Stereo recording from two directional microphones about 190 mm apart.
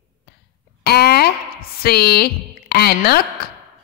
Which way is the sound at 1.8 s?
55° left (ahead or behind).